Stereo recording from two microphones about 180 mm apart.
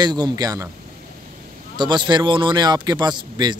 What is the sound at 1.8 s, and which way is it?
Speech, 25° right (ahead or behind).